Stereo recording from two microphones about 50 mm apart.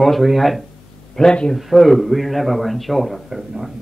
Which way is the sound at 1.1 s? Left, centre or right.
Centre.